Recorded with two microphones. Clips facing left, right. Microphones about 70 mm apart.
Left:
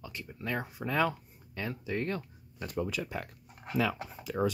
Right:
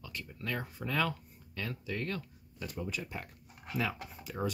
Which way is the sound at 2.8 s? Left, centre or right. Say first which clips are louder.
Left 4 dB; left.